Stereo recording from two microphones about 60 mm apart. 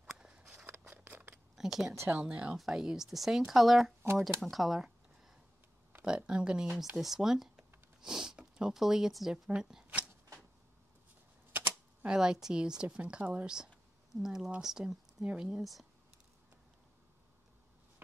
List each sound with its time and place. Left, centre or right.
0.7 s a sound: right
1.6 s speech: centre
1.9 s speech: right
2.1 s speech: centre
2.5 s speech: centre
6.0 s speech: centre
7.0 s a sound: centre
9.5 s speech: centre
12.1 s speech: centre
12.8 s speech: right
14.1 s speech: centre
15.6 s speech: centre